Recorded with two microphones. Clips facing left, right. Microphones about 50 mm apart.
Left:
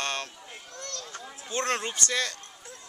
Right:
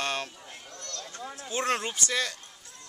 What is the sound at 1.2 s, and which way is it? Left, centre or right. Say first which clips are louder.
Speech: right 1 dB; centre.